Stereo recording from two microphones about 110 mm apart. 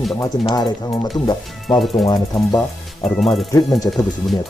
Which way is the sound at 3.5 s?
35° left (ahead or behind).